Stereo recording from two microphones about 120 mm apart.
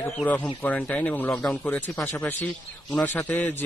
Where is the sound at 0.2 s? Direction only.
15° left (ahead or behind).